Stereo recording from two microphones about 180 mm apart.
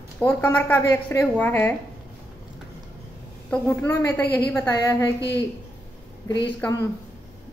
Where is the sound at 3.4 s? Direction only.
10° left (ahead or behind).